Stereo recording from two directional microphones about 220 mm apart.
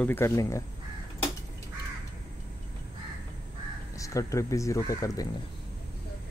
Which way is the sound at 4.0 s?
15° left (ahead or behind).